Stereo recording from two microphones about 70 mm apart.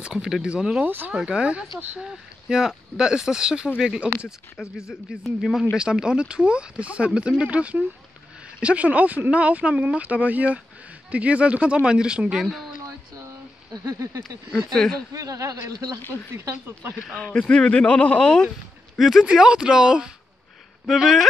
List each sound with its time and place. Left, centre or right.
0.0 s speech: centre
0.8 s speech: right
1.1 s a man's voice: centre
13.8 s a sound: right
14.7 s speech: centre
15.1 s a man's voice: right
16.0 s speech: left
16.3 s speech: right
17.1 s speech: centre
18.9 s a man's voice: centre
19.2 s a man's voice: centre